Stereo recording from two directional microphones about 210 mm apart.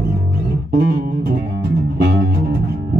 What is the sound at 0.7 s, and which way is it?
Music, 50° right (ahead or behind).